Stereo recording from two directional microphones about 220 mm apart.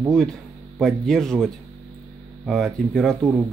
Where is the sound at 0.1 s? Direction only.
Centre (ahead or behind).